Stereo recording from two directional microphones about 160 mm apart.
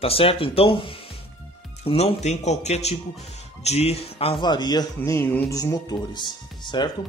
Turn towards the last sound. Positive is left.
turn(degrees=30)  # may be behind; listen again after turning